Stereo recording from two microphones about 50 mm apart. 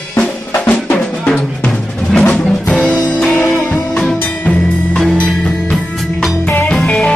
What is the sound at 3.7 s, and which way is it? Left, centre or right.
Music, left.